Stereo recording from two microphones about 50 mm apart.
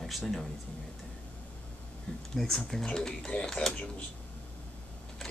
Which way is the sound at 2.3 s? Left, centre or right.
Centre.